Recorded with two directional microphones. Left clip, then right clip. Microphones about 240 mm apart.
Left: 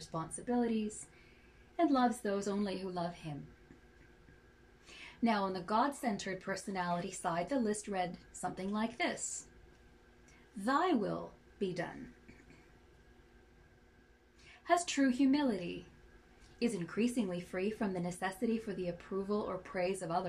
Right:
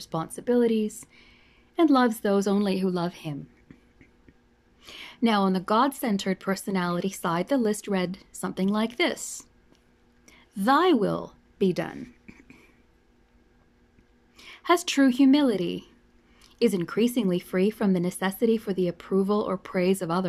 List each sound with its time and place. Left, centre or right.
0.0 s speech: right
4.8 s speech: right
10.6 s speech: right
14.3 s speech: right